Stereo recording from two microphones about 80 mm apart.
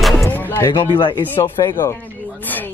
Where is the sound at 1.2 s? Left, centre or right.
Left.